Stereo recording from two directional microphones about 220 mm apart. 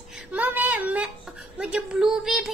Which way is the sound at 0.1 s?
10° right (ahead or behind).